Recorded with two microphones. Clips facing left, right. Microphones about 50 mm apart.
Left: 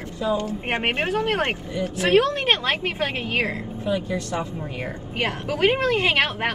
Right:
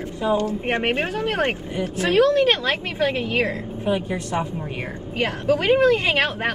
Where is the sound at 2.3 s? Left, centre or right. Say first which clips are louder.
Right 4 dB; centre.